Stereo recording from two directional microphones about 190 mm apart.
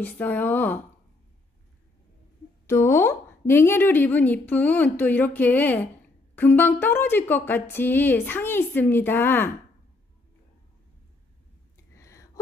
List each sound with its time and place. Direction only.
0.0 s a woman's voice: 10° left (ahead or behind)
2.6 s a woman's voice: 15° left (ahead or behind)
12.0 s a sound: 15° left (ahead or behind)